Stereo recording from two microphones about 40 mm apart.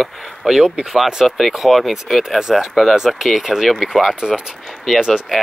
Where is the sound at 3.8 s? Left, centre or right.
Centre.